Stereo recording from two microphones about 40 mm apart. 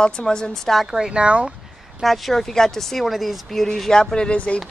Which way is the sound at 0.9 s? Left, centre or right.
Right.